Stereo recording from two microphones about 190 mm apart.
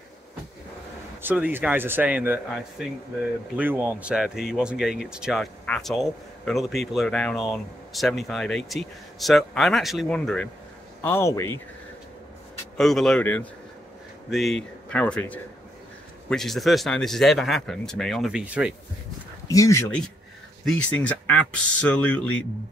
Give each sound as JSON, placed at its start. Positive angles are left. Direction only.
{"t": 1.2, "sound": "a man's voice", "side_deg": -10}
{"t": 12.7, "sound": "speech", "side_deg": 0}
{"t": 19.4, "sound": "speech", "side_deg": 15}